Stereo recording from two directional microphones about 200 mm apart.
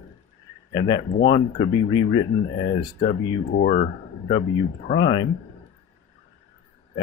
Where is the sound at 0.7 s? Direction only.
20° left (ahead or behind).